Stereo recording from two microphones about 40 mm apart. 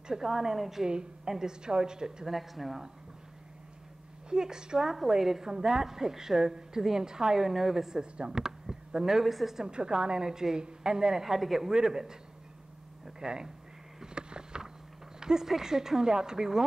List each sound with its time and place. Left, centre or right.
0.1 s a woman's voice: centre
0.8 s a woman's voice: right
2.2 s speech: centre
4.3 s a woman's voice: centre
9.7 s a woman's voice: right; by 11.7 s centre
11.7 s a woman's voice: centre
13.0 s a sound: centre
15.1 s a woman's voice: centre